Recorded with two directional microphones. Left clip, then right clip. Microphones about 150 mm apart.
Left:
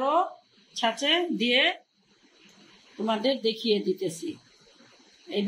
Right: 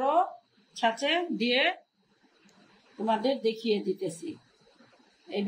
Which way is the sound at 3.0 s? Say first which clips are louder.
Left 1 dB; 15° left (ahead or behind).